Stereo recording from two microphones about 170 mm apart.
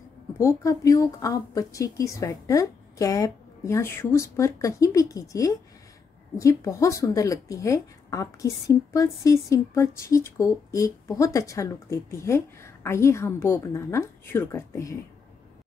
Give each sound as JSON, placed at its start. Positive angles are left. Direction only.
{"t": 0.4, "sound": "speech", "side_deg": 20}